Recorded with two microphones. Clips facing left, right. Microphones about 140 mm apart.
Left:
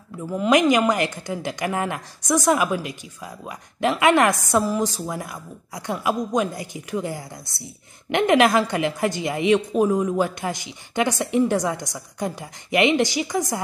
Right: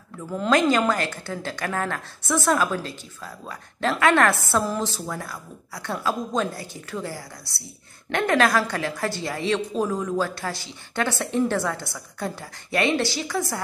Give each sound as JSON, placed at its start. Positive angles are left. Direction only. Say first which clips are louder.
{"t": 0.3, "sound": "a woman's voice", "louder": "left 3 dB", "side_deg": 10}